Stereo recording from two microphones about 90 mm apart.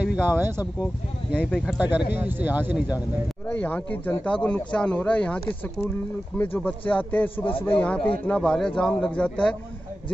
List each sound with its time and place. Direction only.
0.0 s speech: 20° right (ahead or behind)
1.8 s speech: 15° right (ahead or behind)
3.4 s a man's voice: 20° left (ahead or behind)